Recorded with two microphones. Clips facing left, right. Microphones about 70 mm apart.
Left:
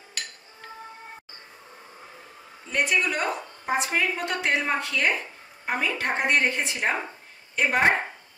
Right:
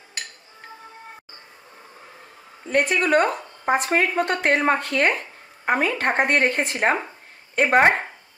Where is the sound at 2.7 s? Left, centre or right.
Right.